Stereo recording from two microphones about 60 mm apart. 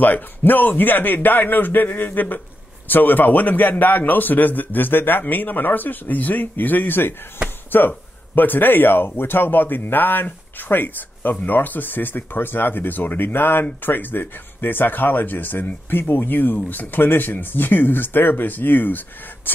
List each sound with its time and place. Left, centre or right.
0.0 s speech: left